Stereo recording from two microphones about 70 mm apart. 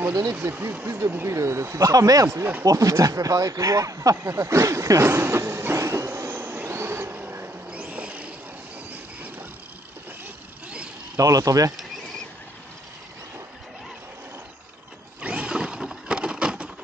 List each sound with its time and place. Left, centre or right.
0.1 s speech: right
5.1 s train: right
7.7 s a sound: centre
8.9 s vehicle: right
11.1 s speech: right
15.2 s wild animals: centre